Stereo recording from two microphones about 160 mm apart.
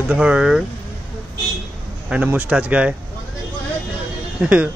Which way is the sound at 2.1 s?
5° right (ahead or behind).